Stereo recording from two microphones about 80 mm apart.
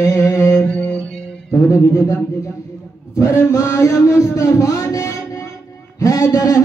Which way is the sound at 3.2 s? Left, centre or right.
Left.